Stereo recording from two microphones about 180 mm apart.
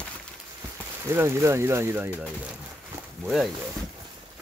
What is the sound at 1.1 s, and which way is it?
Speech, 15° right (ahead or behind).